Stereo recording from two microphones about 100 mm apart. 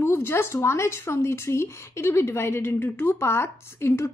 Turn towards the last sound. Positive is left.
turn(degrees=25)  # may be behind; listen again after turning